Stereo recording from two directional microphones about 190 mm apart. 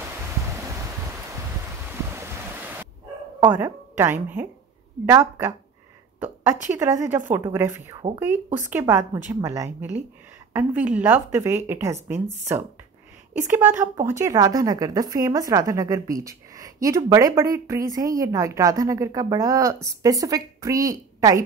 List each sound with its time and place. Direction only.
2.1 s waves: 10° right (ahead or behind)
3.3 s a woman's voice: 10° right (ahead or behind)
6.1 s a sound: 10° right (ahead or behind)
6.8 s a woman's voice: 15° right (ahead or behind)